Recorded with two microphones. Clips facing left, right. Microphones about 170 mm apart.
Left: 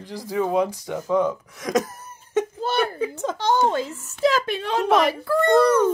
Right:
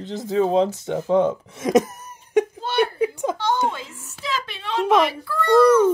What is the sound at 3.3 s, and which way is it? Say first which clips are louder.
A woman's voice: left 3 dB; 40° left (ahead or behind).